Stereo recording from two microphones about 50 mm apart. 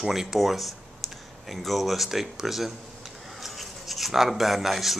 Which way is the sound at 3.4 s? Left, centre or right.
Centre.